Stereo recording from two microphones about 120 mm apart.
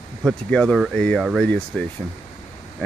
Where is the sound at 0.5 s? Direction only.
10° left (ahead or behind).